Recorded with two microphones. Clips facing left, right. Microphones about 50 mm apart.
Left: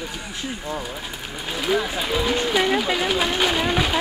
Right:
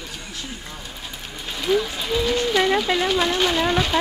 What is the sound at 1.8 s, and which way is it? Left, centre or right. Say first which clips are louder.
Speech: even; centre.